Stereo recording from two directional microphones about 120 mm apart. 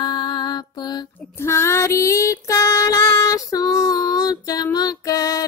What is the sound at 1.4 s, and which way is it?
Music, 20° left (ahead or behind).